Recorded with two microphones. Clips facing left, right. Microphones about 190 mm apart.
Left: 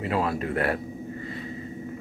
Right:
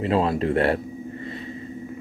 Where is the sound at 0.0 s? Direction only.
25° right (ahead or behind).